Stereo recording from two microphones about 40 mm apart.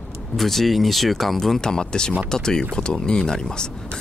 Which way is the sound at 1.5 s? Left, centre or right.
Centre.